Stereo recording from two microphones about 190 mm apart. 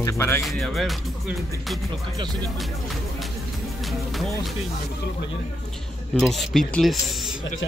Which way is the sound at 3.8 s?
Centre (ahead or behind).